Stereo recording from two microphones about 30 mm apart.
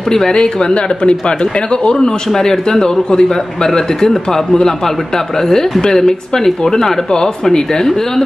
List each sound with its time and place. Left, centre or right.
0.1 s speech: left
2.2 s speech: centre